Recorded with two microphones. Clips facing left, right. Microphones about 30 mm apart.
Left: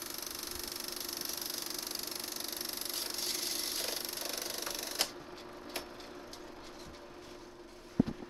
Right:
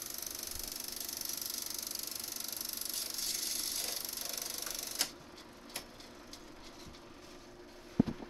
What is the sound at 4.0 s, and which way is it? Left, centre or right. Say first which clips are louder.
Sewing machine: left 3 dB; left.